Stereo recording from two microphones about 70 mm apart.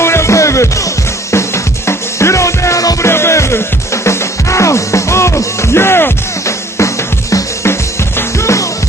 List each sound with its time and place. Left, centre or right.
0.0 s music: left
3.1 s music: left